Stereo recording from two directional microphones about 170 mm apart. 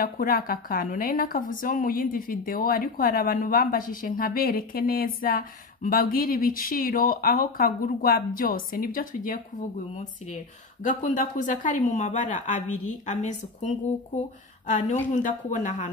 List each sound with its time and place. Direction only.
0.0 s a woman's voice: 60° left (ahead or behind)